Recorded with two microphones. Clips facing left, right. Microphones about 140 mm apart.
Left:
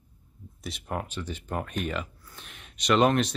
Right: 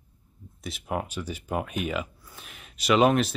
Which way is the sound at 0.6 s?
5° right (ahead or behind).